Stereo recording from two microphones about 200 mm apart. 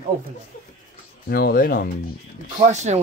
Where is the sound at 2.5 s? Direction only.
35° right (ahead or behind).